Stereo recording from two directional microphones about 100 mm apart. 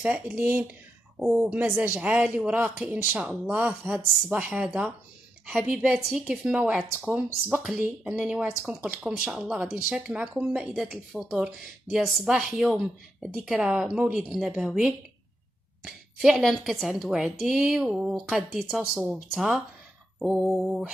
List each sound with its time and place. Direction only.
0.0 s speech: 15° right (ahead or behind)
15.8 s a woman's voice: 5° right (ahead or behind)